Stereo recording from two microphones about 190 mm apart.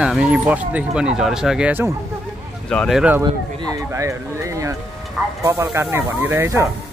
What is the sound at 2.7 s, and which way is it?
Speech, centre (ahead or behind).